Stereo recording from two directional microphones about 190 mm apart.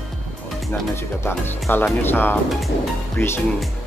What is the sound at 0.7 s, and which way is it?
Music, 10° left (ahead or behind).